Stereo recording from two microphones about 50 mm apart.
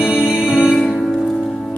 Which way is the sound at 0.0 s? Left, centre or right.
Centre.